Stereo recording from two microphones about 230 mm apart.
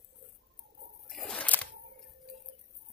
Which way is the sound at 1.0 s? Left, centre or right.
Centre.